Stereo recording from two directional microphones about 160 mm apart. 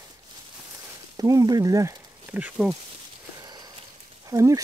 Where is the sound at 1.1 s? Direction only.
25° right (ahead or behind); by 2.7 s 5° right (ahead or behind).